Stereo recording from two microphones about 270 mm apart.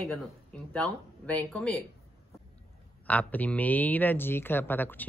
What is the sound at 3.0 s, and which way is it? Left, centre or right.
Speech, centre.